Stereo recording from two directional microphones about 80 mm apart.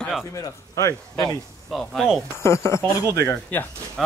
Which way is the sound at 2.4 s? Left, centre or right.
Left.